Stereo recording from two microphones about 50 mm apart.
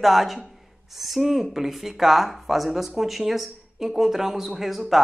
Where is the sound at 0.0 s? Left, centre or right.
Centre.